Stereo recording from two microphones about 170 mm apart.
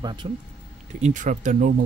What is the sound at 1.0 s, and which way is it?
Speech, 45° right (ahead or behind).